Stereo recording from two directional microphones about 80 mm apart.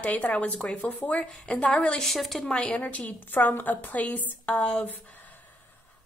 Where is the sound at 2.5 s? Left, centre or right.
Centre.